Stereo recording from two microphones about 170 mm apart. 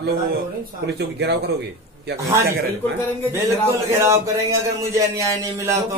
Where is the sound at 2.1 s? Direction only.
15° right (ahead or behind).